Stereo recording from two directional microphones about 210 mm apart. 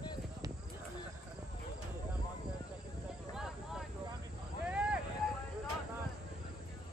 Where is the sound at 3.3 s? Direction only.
Centre (ahead or behind).